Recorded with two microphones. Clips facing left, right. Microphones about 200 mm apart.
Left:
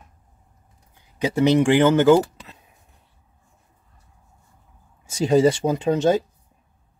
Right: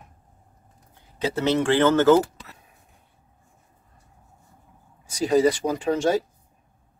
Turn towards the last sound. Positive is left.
turn(degrees=20)  # may be behind; listen again after turning